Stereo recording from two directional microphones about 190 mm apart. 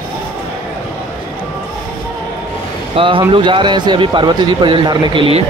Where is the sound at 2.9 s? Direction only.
30° right (ahead or behind).